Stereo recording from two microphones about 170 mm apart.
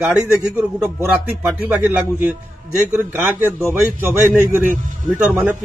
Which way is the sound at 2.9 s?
15° right (ahead or behind).